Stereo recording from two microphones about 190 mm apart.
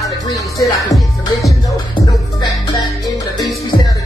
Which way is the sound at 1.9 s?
20° left (ahead or behind).